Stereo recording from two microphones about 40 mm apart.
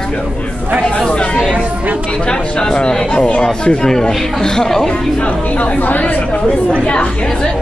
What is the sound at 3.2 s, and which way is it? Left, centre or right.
Speech, left.